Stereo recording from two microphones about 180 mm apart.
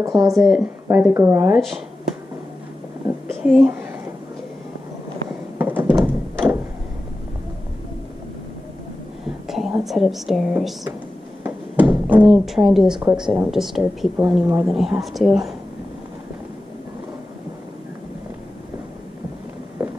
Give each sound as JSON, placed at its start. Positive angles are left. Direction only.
{"t": 0.0, "sound": "speech", "side_deg": -20}
{"t": 0.3, "sound": "a woman's voice", "side_deg": 0}
{"t": 0.8, "sound": "speech", "side_deg": -10}
{"t": 3.3, "sound": "a sound", "side_deg": -5}
{"t": 5.6, "sound": "thunk", "side_deg": -10}
{"t": 9.5, "sound": "a woman's voice", "side_deg": 0}
{"t": 11.4, "sound": "a sound", "side_deg": -10}
{"t": 13.0, "sound": "a woman's voice", "side_deg": -5}